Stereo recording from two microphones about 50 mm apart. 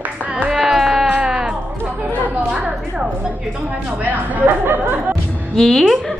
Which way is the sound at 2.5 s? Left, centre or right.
Centre.